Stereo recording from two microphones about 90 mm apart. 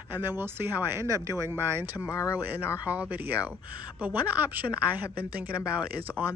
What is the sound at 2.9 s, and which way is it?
Speech, 15° right (ahead or behind).